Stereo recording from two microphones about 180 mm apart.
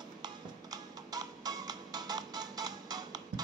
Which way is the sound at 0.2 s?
20° right (ahead or behind).